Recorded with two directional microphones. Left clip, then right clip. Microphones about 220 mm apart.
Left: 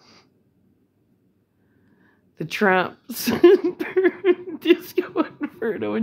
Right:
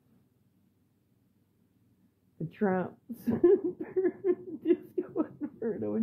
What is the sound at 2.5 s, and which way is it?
Speech, 25° left (ahead or behind).